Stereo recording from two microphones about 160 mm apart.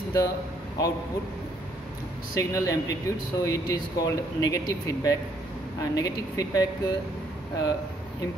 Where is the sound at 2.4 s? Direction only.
20° left (ahead or behind).